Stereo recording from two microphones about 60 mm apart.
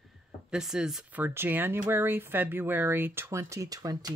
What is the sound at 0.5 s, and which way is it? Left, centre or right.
Speech, centre.